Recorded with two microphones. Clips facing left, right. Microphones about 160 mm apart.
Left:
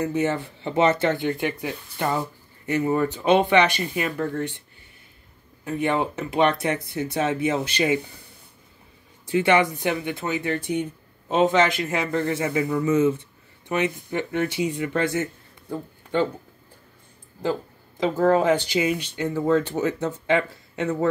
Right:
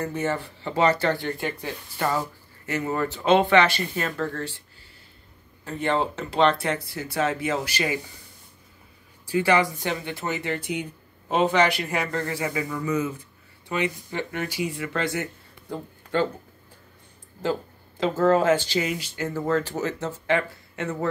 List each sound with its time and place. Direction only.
0.0 s speech: 15° left (ahead or behind)
5.7 s speech: 15° left (ahead or behind)
9.3 s speech: 20° left (ahead or behind)
10.4 s speech: 10° right (ahead or behind)
11.5 s speech: 20° left (ahead or behind)
15.7 s speech: 10° left (ahead or behind)
17.9 s speech: 15° left (ahead or behind)